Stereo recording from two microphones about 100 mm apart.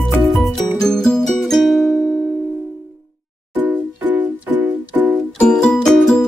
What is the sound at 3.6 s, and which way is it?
Music, 15° right (ahead or behind).